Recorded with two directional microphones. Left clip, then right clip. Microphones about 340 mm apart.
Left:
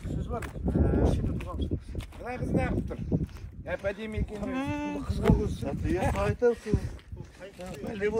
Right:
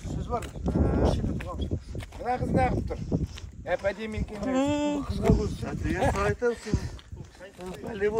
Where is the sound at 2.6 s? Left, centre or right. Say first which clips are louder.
Right 5 dB; right.